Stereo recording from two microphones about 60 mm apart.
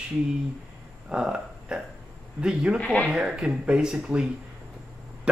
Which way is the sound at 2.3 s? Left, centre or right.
Centre.